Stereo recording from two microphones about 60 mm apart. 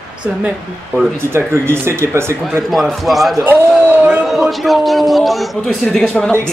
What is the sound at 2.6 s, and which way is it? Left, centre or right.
Speech, centre.